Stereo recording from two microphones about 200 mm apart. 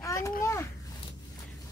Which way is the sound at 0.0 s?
15° left (ahead or behind).